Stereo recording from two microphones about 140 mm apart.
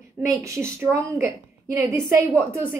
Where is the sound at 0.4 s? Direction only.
20° right (ahead or behind).